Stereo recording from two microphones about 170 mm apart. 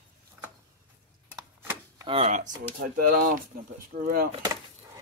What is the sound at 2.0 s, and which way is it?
Speech, 35° right (ahead or behind).